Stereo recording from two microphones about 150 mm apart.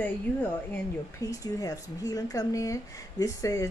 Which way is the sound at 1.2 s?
25° left (ahead or behind).